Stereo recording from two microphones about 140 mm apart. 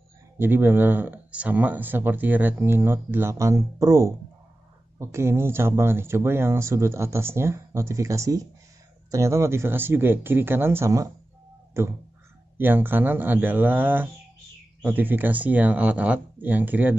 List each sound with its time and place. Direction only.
0.4 s speech: 15° right (ahead or behind)